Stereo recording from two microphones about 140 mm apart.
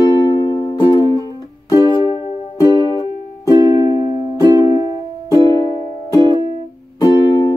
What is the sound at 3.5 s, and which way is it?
Music, 30° right (ahead or behind).